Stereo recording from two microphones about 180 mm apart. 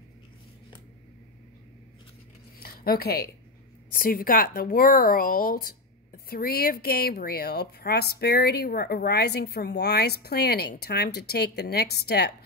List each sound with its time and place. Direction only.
2.6 s speech: 60° left (ahead or behind)